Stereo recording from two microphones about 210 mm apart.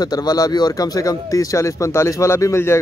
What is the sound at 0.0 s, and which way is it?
Speech, 20° left (ahead or behind).